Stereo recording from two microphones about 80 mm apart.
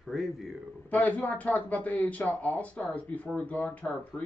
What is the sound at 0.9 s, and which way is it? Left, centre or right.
Speech, centre.